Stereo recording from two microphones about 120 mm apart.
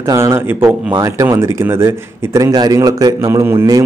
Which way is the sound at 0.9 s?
30° right (ahead or behind).